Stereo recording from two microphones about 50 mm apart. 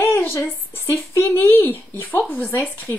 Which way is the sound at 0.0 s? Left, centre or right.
Left.